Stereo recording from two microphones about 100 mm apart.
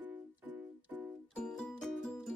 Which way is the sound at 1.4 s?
5° left (ahead or behind).